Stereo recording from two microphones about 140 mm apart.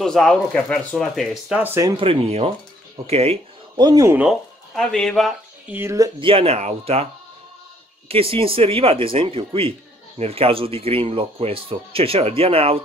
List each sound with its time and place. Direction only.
0.0 s speech: 5° left (ahead or behind)
1.6 s speech: 15° right (ahead or behind)
1.9 s speech: 40° right (ahead or behind)
3.7 s speech: 30° right (ahead or behind)
4.3 s speech: 5° left (ahead or behind)
5.7 s speech: 20° right (ahead or behind)
6.1 s speech: 40° right (ahead or behind)
8.1 s speech: 40° right (ahead or behind)